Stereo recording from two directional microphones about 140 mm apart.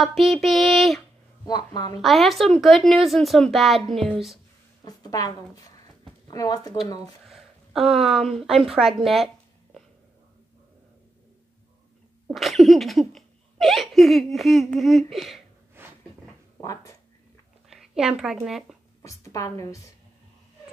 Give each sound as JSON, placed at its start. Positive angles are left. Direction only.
{"t": 0.0, "sound": "speech", "side_deg": 0}
{"t": 1.4, "sound": "speech", "side_deg": 30}
{"t": 2.0, "sound": "speech", "side_deg": 0}
{"t": 4.8, "sound": "speech", "side_deg": 25}
{"t": 7.2, "sound": "a woman's voice", "side_deg": 0}
{"t": 12.3, "sound": "speech", "side_deg": 0}
{"t": 15.8, "sound": "cupboard open or close", "side_deg": -15}
{"t": 16.6, "sound": "speech", "side_deg": 25}
{"t": 17.6, "sound": "a woman's voice", "side_deg": -5}
{"t": 19.0, "sound": "speech", "side_deg": 25}